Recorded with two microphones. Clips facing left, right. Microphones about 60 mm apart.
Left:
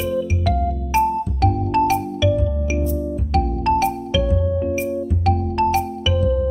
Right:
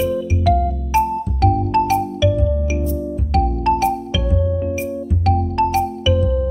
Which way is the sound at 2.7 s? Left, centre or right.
Left.